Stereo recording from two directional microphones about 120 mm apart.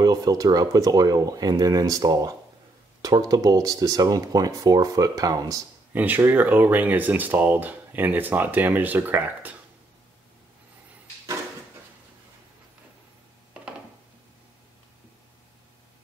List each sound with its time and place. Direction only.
0.0 s speech: 30° right (ahead or behind)
5.9 s speech: 15° right (ahead or behind)